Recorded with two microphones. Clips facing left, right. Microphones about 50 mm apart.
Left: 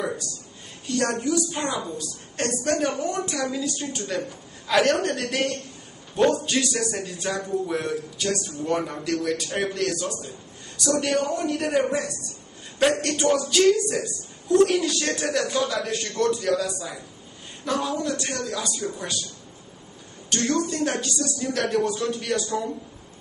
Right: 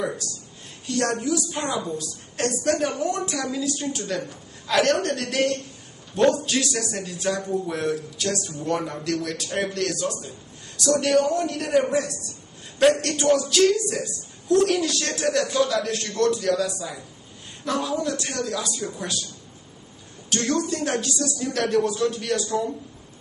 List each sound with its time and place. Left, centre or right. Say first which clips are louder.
0.8 s a woman's voice: even; centre
20.2 s a woman's voice: even; centre